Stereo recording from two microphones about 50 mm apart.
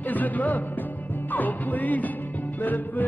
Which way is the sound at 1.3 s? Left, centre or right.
Left.